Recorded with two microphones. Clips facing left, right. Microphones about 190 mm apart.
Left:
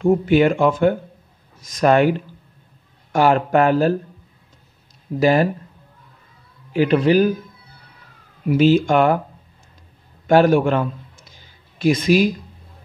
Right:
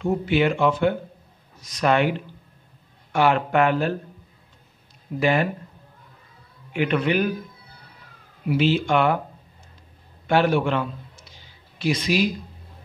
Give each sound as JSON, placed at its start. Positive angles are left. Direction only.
{"t": 0.0, "sound": "speech", "side_deg": 45}
{"t": 5.2, "sound": "speech", "side_deg": 40}
{"t": 6.7, "sound": "speech", "side_deg": 35}
{"t": 8.5, "sound": "speech", "side_deg": 45}
{"t": 10.2, "sound": "a man's voice", "side_deg": 45}